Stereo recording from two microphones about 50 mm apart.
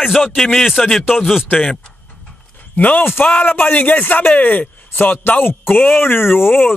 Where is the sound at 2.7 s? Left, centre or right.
Left.